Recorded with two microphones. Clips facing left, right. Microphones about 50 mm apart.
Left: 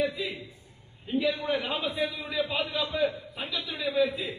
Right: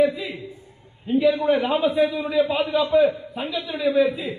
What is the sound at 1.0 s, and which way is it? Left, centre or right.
A man's voice, centre.